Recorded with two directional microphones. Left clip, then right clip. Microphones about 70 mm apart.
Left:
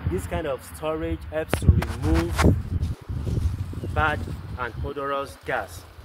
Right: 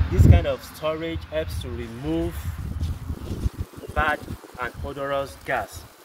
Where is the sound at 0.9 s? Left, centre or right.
Left.